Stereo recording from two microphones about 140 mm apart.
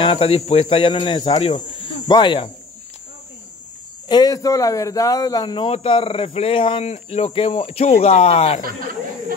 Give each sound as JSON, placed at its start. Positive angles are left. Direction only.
{"t": 0.0, "sound": "speech", "side_deg": 40}
{"t": 4.1, "sound": "speech", "side_deg": 25}